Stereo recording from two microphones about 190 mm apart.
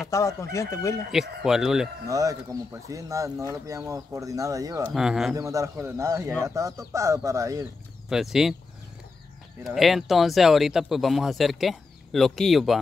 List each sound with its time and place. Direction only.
0.1 s speech: 15° left (ahead or behind)
1.1 s speech: centre (ahead or behind)
2.0 s speech: 15° right (ahead or behind)
4.8 s speech: centre (ahead or behind)
5.3 s speech: 15° right (ahead or behind)
8.1 s speech: centre (ahead or behind)
9.6 s speech: centre (ahead or behind)